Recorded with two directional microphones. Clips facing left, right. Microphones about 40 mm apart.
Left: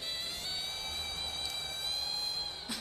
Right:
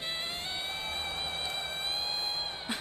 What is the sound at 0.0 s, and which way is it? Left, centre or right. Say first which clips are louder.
Music: right 4 dB; right.